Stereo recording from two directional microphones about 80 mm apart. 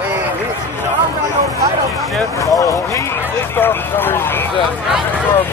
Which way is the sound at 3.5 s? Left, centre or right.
Left.